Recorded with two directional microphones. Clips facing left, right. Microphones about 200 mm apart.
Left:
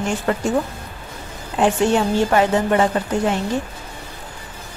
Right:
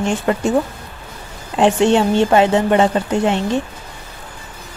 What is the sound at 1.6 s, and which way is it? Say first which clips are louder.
A woman's voice: right 4 dB; 25° right (ahead or behind).